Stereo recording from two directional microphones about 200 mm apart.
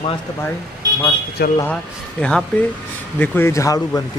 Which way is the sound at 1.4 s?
55° left (ahead or behind).